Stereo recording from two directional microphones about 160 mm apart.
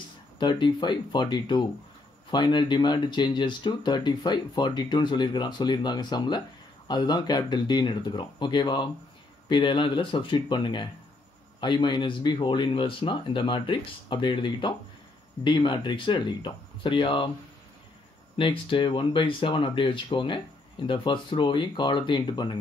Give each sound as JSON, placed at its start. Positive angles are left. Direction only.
{"t": 0.4, "sound": "speech", "side_deg": 30}
{"t": 18.4, "sound": "speech", "side_deg": 30}